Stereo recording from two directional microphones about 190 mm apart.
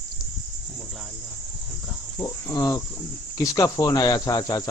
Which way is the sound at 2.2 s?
15° left (ahead or behind).